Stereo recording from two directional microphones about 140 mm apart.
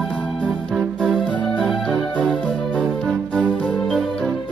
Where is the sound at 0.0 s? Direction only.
5° left (ahead or behind).